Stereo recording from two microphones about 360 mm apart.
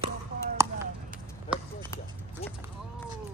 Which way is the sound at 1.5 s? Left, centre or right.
Centre.